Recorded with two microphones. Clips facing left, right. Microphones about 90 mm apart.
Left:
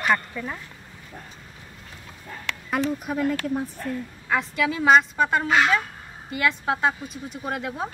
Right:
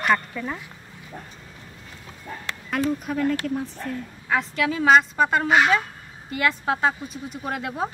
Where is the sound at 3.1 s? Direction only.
5° left (ahead or behind).